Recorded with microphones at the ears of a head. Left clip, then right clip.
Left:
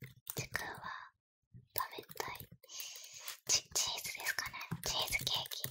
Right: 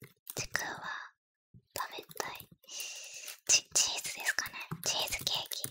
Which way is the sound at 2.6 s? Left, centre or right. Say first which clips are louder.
Right 7 dB; right.